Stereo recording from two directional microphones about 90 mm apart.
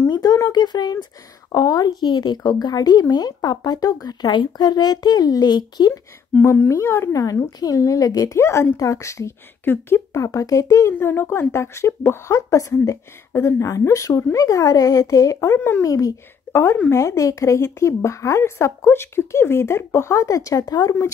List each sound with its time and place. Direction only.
0.1 s a woman's voice: 45° left (ahead or behind)
6.4 s a woman's voice: 25° left (ahead or behind)
15.8 s a woman's voice: 40° left (ahead or behind)
16.5 s speech: 20° left (ahead or behind)
16.9 s a woman's voice: 35° left (ahead or behind)